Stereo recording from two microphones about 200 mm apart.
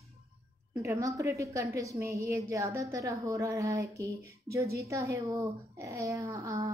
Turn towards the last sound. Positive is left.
turn(degrees=-15)  # may be behind; listen again after turning